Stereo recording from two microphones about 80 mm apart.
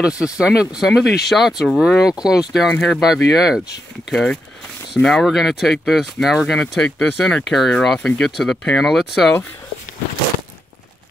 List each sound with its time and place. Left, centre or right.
0.2 s speech: centre
4.1 s speech: centre